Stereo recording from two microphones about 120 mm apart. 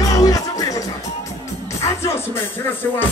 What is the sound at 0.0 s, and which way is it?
Music, 30° left (ahead or behind).